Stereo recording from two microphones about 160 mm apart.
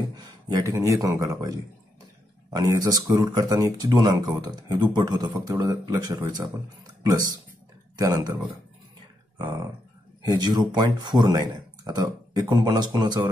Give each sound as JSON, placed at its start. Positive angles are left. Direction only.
{"t": 0.1, "sound": "speech", "side_deg": -25}
{"t": 9.4, "sound": "speech", "side_deg": -20}